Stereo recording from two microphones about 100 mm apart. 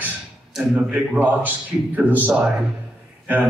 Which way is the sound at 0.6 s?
5° right (ahead or behind).